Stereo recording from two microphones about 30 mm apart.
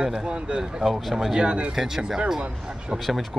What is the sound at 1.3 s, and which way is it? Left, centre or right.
Speech, right.